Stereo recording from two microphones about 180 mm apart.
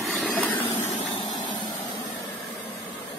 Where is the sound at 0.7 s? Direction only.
30° left (ahead or behind).